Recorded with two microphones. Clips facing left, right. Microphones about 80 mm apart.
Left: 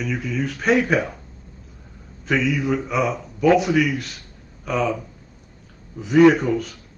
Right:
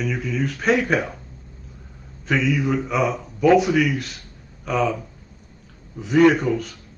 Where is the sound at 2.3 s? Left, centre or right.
Centre.